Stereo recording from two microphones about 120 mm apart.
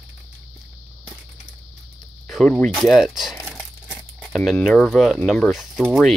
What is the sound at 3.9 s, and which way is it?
Music, 5° right (ahead or behind).